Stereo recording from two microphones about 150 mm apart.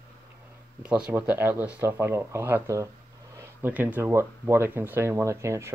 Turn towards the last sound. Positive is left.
turn(degrees=-20)  # may be behind; listen again after turning